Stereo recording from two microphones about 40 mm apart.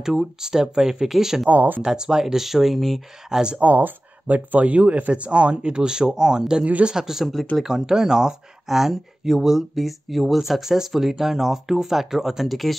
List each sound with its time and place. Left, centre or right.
0.0 s speech: centre
1.5 s speech: right
1.8 s speech: centre
3.3 s speech: centre
4.3 s speech: right; by 6.6 s centre
6.6 s speech: right
6.9 s speech: centre